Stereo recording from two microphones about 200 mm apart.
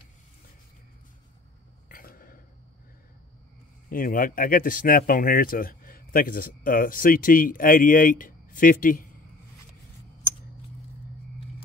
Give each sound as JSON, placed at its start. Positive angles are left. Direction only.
{"t": 1.9, "sound": "burping", "side_deg": 45}
{"t": 3.9, "sound": "speech", "side_deg": 45}